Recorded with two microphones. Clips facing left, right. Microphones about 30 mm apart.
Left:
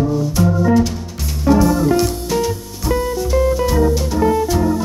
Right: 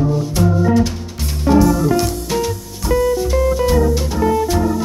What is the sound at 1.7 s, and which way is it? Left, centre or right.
Music, centre.